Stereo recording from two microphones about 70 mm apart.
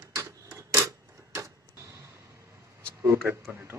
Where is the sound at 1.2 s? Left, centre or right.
Right.